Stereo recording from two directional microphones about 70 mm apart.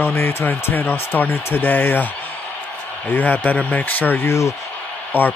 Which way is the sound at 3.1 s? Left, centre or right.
Left.